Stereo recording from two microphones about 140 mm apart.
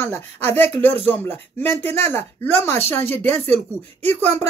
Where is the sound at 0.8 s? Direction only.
50° right (ahead or behind).